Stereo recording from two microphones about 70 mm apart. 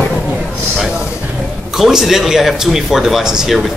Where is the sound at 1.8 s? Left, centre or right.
Centre.